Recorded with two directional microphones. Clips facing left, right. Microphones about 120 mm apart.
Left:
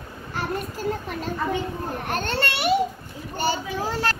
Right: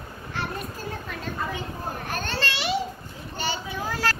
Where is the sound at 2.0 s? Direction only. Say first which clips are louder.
Left 4 dB; 60° left (ahead or behind).